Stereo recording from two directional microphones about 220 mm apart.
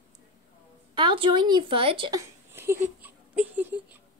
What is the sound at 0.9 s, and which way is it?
A woman's voice, 20° right (ahead or behind).